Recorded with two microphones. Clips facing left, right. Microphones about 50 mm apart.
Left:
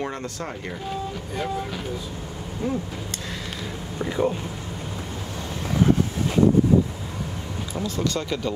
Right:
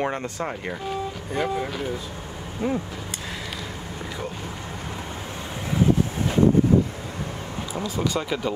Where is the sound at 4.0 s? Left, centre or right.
Centre.